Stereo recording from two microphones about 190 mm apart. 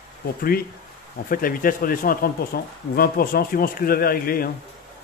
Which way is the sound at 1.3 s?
50° left (ahead or behind).